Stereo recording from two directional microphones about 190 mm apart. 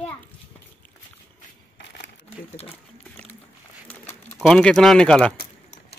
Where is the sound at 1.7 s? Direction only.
70° left (ahead or behind).